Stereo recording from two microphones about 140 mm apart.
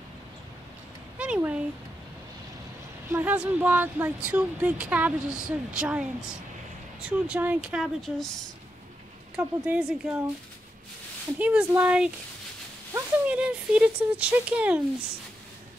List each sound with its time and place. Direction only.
1.1 s speech: 10° right (ahead or behind)
3.1 s a woman's voice: 15° right (ahead or behind)
9.3 s a woman's voice: 10° right (ahead or behind)
11.3 s a woman's voice: 10° right (ahead or behind)